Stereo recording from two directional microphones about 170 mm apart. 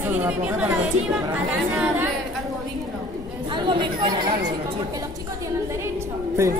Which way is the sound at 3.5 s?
30° right (ahead or behind).